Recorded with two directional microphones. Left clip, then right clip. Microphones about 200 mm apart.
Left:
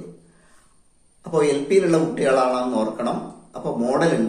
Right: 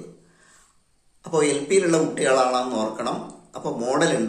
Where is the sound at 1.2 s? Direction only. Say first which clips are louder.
Left 2 dB; 20° right (ahead or behind).